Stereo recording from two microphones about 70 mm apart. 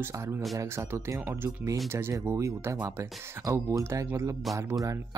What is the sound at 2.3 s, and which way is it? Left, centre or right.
Speech, right.